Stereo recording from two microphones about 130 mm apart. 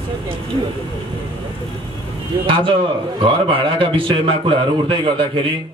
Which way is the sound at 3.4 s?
45° right (ahead or behind).